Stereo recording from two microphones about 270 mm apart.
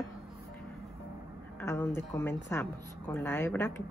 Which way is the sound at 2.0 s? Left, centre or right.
Centre.